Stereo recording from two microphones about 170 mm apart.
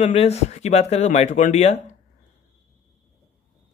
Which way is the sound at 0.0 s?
40° left (ahead or behind).